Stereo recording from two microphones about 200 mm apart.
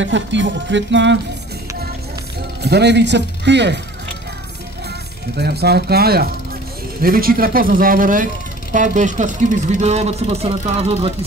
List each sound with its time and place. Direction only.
0.0 s speech: 65° right (ahead or behind)
2.6 s speech: 55° right (ahead or behind)
5.4 s a man's voice: 55° right (ahead or behind); by 11.1 s 30° right (ahead or behind)